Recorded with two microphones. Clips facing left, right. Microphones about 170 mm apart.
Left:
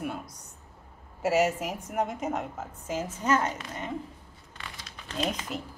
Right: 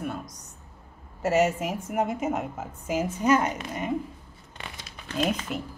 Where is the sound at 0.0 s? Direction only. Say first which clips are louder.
Right 1 dB; 10° left (ahead or behind).